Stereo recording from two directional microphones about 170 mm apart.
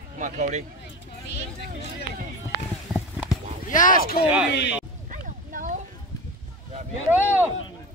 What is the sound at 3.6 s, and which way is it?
Speech, 50° left (ahead or behind).